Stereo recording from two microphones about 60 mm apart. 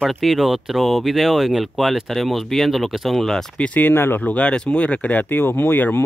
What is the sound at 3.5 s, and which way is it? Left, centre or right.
Speech, left.